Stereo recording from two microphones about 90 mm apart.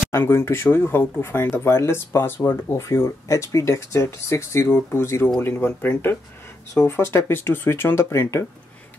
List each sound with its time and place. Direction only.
0.1 s speech: 30° left (ahead or behind)